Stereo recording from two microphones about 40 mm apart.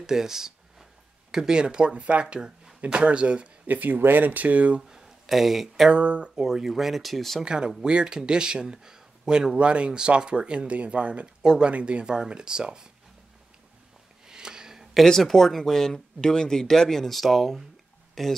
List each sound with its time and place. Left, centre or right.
0.0 s a sound: centre
1.3 s speech: centre
3.6 s speech: right
4.8 s a sound: centre
5.9 s speech: right
6.4 s speech: centre
7.4 s speech: right
9.6 s speech: right
14.2 s a sound: centre
15.0 s speech: centre